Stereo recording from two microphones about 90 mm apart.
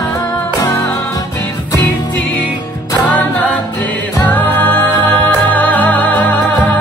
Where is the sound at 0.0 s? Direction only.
45° left (ahead or behind).